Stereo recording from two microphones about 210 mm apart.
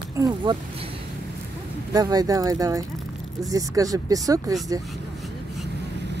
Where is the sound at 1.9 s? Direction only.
15° right (ahead or behind).